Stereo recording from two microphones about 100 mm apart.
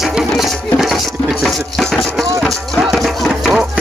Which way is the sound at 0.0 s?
5° right (ahead or behind).